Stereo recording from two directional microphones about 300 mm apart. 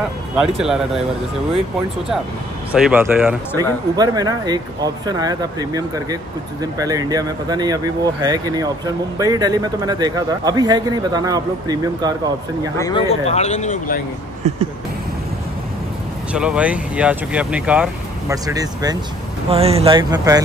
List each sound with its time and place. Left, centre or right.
0.4 s speech: centre
2.7 s speech: centre
12.7 s speech: centre
14.4 s a sound: right
16.3 s speech: centre